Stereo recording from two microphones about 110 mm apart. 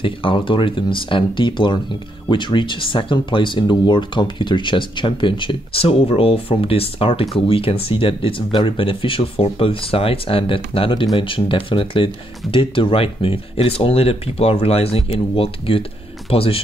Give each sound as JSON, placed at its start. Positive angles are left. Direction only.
{"t": 0.0, "sound": "speech", "side_deg": 50}